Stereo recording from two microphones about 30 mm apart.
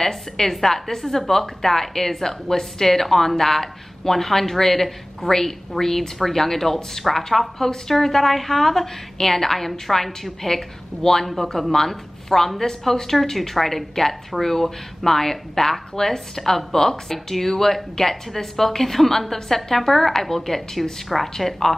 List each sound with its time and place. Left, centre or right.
0.0 s a woman's voice: centre